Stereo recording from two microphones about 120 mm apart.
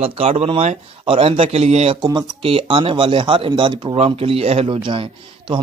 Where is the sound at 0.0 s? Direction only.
55° right (ahead or behind).